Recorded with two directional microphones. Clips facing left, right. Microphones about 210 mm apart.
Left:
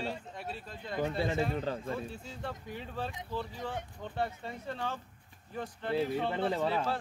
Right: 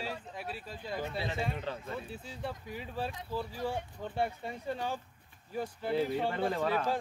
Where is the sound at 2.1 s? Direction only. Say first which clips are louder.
Right 1 dB; 5° right (ahead or behind).